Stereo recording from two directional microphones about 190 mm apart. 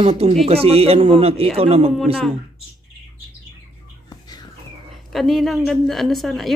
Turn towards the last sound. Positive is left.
turn(degrees=0)  # may be behind; listen again after turning